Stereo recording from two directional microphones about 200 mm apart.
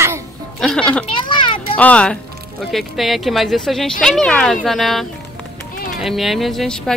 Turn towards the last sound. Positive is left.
turn(degrees=0)  # may be behind; listen again after turning